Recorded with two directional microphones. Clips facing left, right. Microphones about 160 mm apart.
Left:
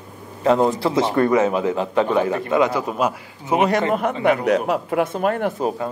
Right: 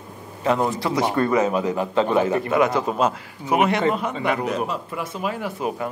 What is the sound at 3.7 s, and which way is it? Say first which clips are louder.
A man's voice: left 2 dB; 55° left (ahead or behind).